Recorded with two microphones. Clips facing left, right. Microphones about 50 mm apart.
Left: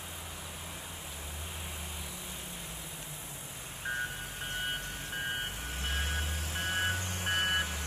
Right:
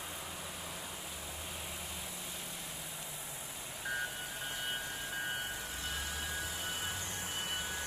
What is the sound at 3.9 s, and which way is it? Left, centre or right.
Vehicle, left.